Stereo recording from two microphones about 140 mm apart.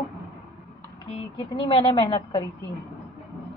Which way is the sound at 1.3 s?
40° left (ahead or behind).